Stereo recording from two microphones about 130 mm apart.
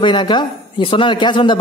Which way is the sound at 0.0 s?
35° left (ahead or behind).